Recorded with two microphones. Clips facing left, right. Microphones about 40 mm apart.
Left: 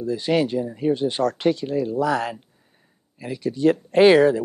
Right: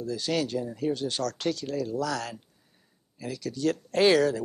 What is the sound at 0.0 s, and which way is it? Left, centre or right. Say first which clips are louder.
Speech: left 7 dB; left.